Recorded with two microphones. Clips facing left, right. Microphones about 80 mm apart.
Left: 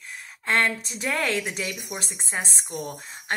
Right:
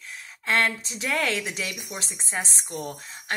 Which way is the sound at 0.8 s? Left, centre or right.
Left.